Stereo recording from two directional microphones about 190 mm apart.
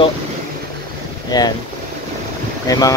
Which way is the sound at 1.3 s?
20° left (ahead or behind).